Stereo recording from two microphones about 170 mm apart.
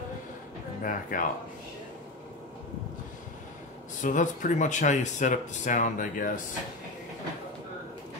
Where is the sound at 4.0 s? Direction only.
50° left (ahead or behind).